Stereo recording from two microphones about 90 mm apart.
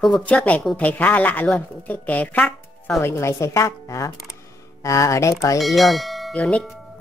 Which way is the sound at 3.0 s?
30° left (ahead or behind).